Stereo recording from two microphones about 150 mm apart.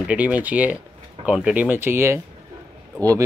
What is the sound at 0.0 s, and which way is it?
Speech, 10° right (ahead or behind).